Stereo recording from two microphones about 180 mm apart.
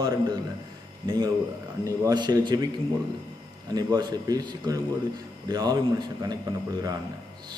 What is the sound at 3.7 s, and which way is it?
A man's voice, 20° right (ahead or behind).